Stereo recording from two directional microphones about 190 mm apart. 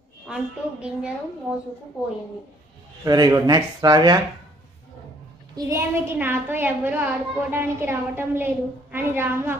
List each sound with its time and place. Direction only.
0.3 s speech: 5° right (ahead or behind)
3.1 s speech: 20° right (ahead or behind)
5.6 s a woman's voice: 15° right (ahead or behind)